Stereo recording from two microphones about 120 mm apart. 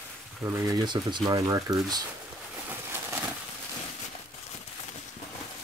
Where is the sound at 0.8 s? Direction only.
40° right (ahead or behind).